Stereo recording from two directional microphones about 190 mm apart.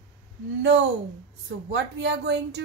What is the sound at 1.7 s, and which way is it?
Speech, 70° right (ahead or behind).